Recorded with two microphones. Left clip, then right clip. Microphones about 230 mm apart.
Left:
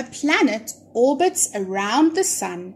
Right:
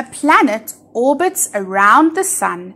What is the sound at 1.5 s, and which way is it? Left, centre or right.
Speech, right.